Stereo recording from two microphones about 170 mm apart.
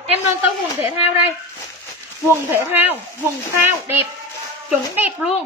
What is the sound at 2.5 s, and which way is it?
Speech, 15° right (ahead or behind).